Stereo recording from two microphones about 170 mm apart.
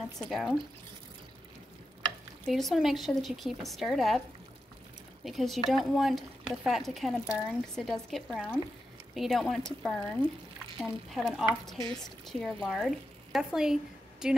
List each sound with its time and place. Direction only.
0.2 s speech: centre (ahead or behind)
2.4 s speech: centre (ahead or behind)
5.2 s speech: centre (ahead or behind)